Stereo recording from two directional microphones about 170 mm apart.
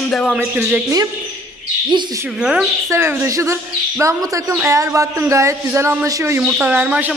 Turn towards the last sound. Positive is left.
turn(degrees=-10)  # may be behind; listen again after turning